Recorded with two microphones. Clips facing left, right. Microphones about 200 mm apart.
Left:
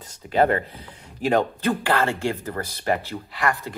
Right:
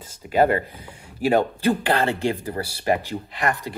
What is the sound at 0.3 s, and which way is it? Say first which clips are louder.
Speech: right 1 dB; 10° right (ahead or behind).